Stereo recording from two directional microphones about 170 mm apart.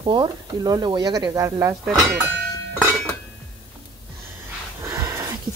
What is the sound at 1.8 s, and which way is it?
Speech, 5° right (ahead or behind).